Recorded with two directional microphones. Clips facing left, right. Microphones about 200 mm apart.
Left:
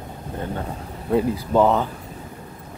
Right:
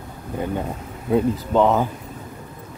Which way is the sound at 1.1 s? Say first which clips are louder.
Right 1 dB; centre (ahead or behind).